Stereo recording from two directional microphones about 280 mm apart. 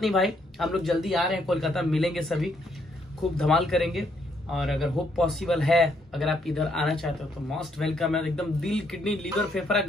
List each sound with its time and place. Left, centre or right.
0.0 s a man's voice: centre